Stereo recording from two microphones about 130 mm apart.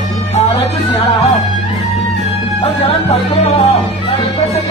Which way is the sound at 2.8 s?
55° left (ahead or behind).